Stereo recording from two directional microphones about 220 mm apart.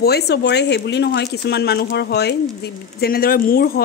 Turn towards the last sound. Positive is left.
turn(degrees=45)  # may be behind; listen again after turning